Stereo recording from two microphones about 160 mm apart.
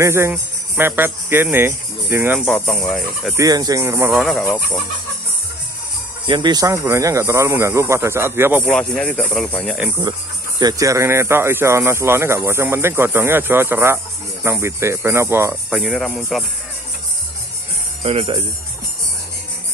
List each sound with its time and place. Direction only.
0.0 s speech: 15° right (ahead or behind)
2.4 s speech: 5° left (ahead or behind)
3.3 s speech: 25° right (ahead or behind)
4.1 s speech: centre (ahead or behind)
6.2 s speech: 30° right (ahead or behind)
8.6 s speech: 5° left (ahead or behind)
9.8 s speech: 10° right (ahead or behind)
10.6 s speech: 20° right (ahead or behind)
15.5 s speech: centre (ahead or behind)
18.0 s speech: 35° right (ahead or behind)